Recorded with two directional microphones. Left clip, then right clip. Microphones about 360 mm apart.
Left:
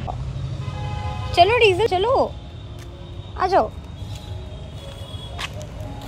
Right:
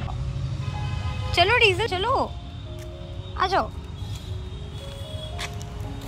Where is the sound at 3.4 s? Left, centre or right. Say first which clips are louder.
Left 5 dB; centre.